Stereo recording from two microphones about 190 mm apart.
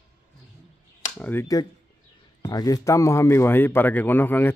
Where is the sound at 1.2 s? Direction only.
10° left (ahead or behind).